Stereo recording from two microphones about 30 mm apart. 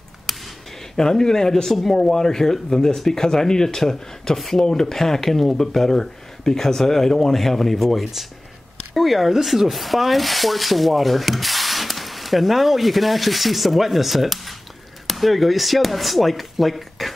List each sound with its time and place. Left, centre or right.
0.3 s a sound: centre
0.9 s speech: centre
8.9 s rub: centre